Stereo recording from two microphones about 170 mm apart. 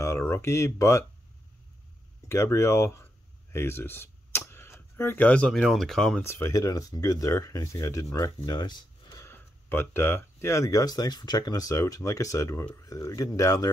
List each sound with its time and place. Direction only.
0.0 s a sound: 15° left (ahead or behind)
2.2 s speech: 15° left (ahead or behind)
6.2 s speech: 15° left (ahead or behind)